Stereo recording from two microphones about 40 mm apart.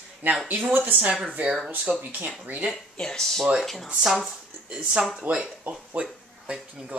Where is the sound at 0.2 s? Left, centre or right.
Right.